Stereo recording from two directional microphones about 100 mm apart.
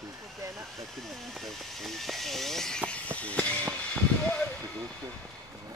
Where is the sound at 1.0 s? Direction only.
Centre (ahead or behind).